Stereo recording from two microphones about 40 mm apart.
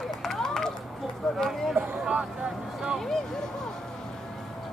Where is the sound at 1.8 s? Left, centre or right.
Right.